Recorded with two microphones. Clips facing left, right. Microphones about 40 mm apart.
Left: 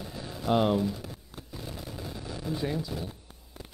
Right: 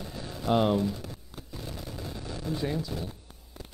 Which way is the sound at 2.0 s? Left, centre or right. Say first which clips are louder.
Even; centre.